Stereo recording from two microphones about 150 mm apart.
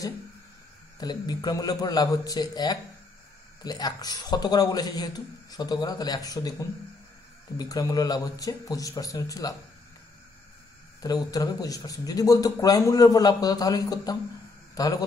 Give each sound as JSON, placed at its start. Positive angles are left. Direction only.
{"t": 0.9, "sound": "speech", "side_deg": 25}
{"t": 11.0, "sound": "speech", "side_deg": 25}